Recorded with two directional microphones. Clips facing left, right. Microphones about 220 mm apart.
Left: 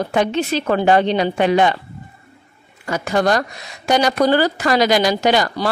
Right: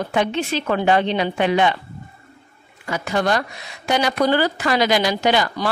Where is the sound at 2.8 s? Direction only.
45° left (ahead or behind).